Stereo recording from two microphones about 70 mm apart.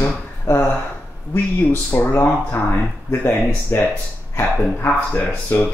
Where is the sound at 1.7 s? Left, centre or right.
Left.